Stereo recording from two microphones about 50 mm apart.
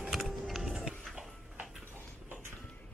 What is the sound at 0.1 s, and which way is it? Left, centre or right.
Music, centre.